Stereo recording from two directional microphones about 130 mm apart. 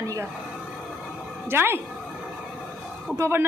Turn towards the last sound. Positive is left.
turn(degrees=-20)  # may be behind; listen again after turning